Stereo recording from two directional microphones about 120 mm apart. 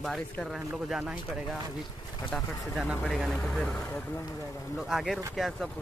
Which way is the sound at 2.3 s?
10° left (ahead or behind).